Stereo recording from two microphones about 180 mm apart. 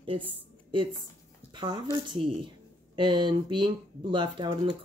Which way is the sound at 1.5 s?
25° right (ahead or behind).